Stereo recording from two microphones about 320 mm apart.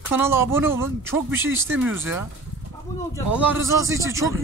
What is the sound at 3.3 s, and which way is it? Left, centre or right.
Speech, centre.